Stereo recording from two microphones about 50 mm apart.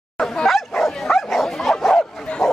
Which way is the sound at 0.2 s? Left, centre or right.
Centre.